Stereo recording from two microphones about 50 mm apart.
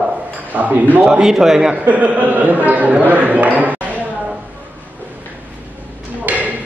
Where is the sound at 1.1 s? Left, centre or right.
Centre.